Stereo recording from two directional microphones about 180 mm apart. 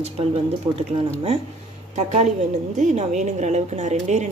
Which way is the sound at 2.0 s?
40° right (ahead or behind).